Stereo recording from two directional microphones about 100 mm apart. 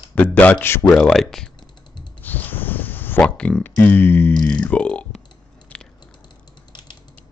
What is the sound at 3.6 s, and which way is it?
Speech, 20° left (ahead or behind).